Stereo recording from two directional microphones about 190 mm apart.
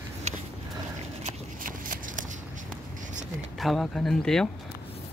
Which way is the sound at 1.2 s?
45° right (ahead or behind).